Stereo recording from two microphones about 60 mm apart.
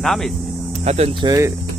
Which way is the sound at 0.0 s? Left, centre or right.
Centre.